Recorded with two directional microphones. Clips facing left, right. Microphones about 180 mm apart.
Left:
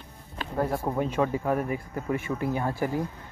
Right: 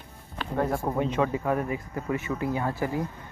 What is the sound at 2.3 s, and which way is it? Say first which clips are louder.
Speech: even; 10° left (ahead or behind).